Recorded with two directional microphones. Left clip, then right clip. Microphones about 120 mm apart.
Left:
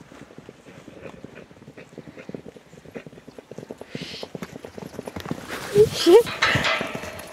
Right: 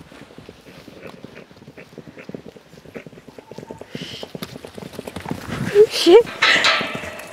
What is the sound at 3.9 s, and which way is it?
Clip-clop, 15° right (ahead or behind).